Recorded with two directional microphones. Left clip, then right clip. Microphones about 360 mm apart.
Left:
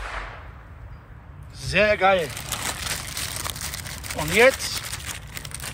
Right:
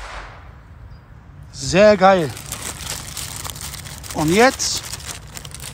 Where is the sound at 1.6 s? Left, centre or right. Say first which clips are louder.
Right 8 dB; centre.